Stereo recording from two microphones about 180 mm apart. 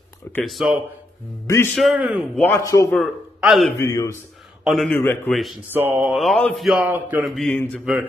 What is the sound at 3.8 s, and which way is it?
Speech, 20° left (ahead or behind).